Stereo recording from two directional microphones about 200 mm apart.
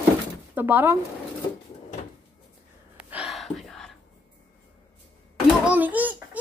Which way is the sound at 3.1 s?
5° right (ahead or behind).